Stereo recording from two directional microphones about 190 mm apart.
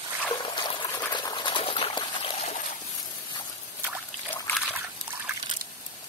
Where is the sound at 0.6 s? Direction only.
25° left (ahead or behind).